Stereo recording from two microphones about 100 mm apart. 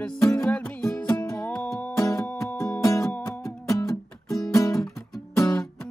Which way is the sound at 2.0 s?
30° left (ahead or behind).